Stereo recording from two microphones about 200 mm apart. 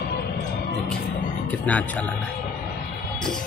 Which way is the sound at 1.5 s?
5° left (ahead or behind).